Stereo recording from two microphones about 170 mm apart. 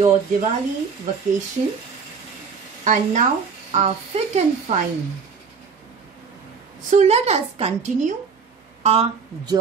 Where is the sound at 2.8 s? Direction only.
45° right (ahead or behind).